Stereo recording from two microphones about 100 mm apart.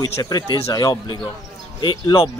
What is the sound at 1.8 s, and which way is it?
Speech, 50° left (ahead or behind).